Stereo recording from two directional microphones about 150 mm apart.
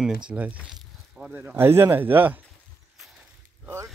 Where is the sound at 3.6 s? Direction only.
20° right (ahead or behind).